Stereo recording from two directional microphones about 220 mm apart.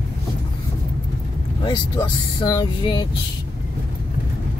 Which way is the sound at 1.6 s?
20° left (ahead or behind).